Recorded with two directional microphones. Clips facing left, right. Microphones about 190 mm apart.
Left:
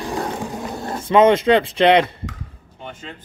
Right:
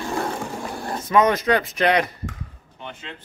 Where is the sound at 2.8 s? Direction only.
40° left (ahead or behind).